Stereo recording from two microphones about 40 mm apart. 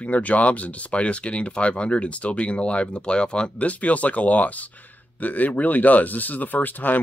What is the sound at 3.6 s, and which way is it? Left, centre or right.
Speech, left.